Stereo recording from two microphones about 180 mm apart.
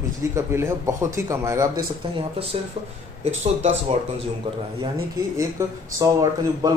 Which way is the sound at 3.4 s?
35° right (ahead or behind).